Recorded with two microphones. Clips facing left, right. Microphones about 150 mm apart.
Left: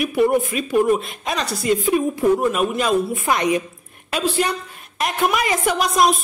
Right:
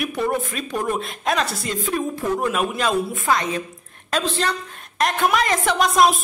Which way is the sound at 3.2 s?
15° left (ahead or behind).